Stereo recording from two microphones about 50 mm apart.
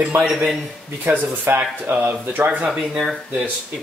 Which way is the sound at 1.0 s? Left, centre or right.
Right.